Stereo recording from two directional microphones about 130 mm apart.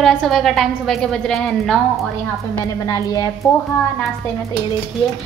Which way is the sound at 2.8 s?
30° left (ahead or behind).